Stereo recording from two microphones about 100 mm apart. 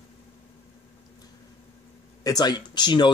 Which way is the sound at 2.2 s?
40° left (ahead or behind).